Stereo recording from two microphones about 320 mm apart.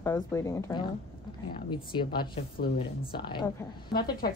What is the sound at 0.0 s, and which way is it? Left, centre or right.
Speech, centre.